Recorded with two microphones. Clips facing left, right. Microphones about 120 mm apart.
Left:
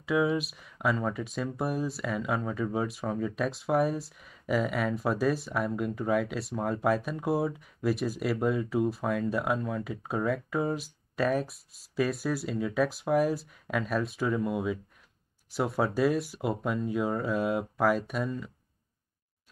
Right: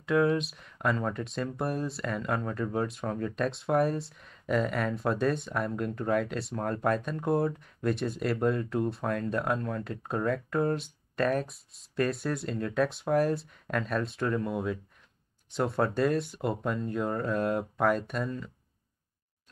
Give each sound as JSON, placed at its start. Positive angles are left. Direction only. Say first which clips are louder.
{"t": 0.0, "sound": "speech", "louder": "right 1 dB", "side_deg": 0}